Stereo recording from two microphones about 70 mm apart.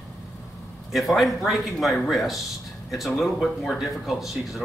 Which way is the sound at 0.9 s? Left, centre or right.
Centre.